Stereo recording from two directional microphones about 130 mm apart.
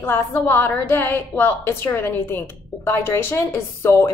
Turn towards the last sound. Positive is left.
turn(degrees=20)  # may be behind; listen again after turning